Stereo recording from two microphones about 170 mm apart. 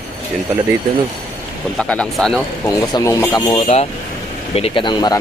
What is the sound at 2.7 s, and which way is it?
Speech, 20° left (ahead or behind).